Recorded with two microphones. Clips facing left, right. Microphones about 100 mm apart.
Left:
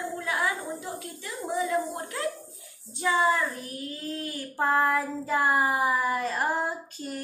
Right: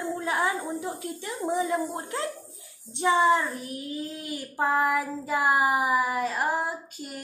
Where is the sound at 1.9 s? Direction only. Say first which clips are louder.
Even; 25° right (ahead or behind).